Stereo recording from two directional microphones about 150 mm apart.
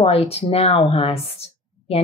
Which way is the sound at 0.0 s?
40° left (ahead or behind).